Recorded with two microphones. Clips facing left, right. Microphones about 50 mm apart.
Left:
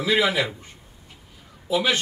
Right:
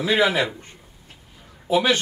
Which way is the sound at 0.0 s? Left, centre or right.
Right.